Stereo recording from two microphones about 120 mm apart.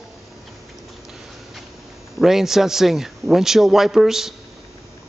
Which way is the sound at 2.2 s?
5° right (ahead or behind).